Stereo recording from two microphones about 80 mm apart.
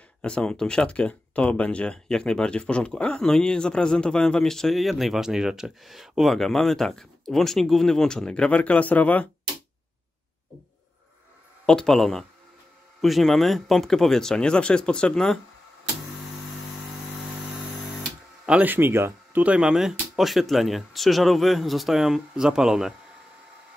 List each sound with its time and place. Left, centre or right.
0.2 s speech: centre
11.6 s speech: centre
18.4 s a sound: centre
18.7 s speech: right
19.4 s speech: centre